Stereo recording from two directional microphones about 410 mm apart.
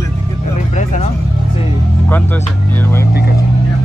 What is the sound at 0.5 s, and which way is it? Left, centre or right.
Speech, centre.